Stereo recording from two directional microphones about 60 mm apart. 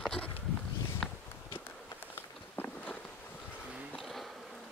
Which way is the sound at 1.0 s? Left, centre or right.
Centre.